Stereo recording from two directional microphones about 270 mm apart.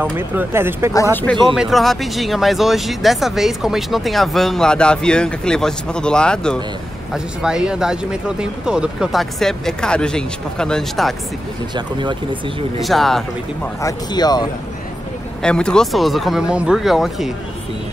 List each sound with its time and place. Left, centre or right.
0.0 s speech: centre
1.1 s speech: centre
11.7 s speech: centre
12.8 s speech: centre
13.8 s speech: centre
15.4 s speech: centre